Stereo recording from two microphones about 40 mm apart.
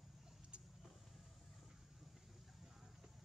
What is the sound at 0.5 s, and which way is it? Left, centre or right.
Vehicle, right.